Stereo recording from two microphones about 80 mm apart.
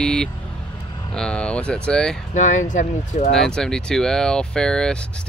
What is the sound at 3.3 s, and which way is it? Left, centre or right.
Speech, centre.